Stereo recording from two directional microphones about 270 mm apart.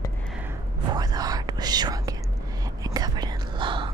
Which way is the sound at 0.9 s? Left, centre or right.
Centre.